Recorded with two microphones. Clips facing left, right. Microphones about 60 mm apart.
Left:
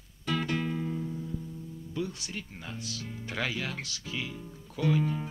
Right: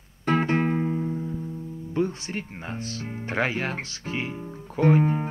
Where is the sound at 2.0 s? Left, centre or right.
Right.